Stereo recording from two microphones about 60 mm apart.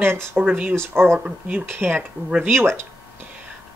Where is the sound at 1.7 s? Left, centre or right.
Right.